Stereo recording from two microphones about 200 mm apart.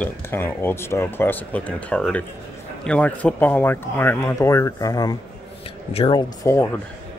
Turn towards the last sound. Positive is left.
turn(degrees=15)  # may be behind; listen again after turning